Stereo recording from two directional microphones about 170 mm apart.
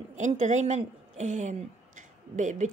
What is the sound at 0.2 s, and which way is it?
Speech, 45° right (ahead or behind).